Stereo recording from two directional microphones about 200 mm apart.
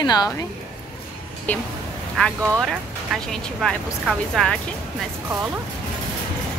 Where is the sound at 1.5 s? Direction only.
10° left (ahead or behind).